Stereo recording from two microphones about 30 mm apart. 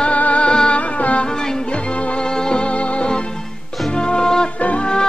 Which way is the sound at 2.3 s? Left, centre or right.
Left.